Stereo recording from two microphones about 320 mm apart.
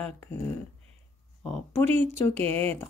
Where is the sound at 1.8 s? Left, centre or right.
Right.